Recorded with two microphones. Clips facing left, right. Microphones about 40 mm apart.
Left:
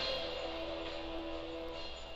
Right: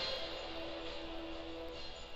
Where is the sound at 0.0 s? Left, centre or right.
Left.